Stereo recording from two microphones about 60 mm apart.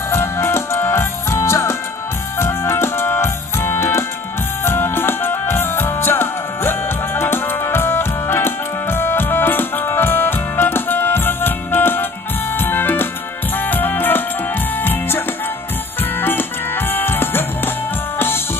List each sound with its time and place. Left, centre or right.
0.1 s music: left